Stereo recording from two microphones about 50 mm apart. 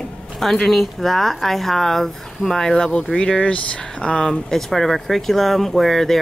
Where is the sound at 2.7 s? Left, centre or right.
Centre.